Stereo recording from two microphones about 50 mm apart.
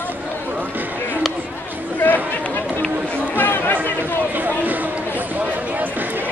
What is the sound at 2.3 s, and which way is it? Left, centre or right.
Run, left.